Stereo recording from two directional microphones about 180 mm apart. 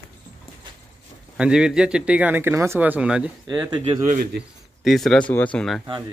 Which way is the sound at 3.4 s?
25° right (ahead or behind).